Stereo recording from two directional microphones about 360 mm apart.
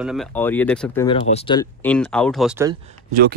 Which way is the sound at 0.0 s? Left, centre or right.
Centre.